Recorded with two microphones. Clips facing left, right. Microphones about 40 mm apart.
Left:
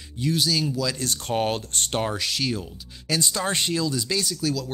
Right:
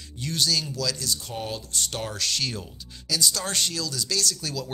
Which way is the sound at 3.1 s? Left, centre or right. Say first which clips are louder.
Left 2 dB; left.